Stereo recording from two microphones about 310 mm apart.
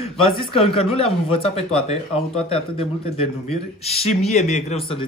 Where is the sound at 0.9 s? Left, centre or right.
Centre.